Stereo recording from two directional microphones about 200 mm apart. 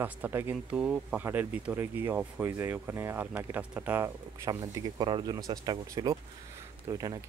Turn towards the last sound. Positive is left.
turn(degrees=-15)  # may be behind; listen again after turning